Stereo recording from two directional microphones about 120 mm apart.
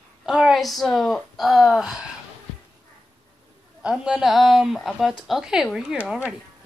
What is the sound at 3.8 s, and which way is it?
Speech, 5° right (ahead or behind).